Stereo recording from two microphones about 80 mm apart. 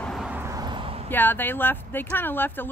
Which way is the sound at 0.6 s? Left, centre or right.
Right.